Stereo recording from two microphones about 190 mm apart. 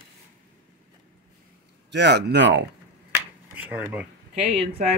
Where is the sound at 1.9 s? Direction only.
65° right (ahead or behind).